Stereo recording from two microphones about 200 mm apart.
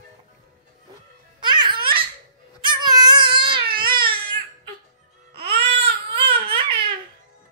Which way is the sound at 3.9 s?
50° right (ahead or behind).